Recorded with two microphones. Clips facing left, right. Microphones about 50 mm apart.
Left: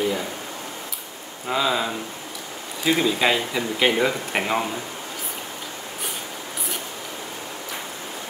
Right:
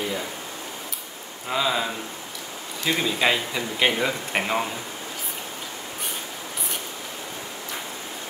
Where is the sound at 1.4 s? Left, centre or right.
Centre.